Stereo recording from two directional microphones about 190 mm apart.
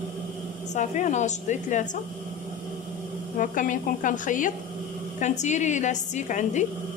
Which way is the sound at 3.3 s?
45° left (ahead or behind).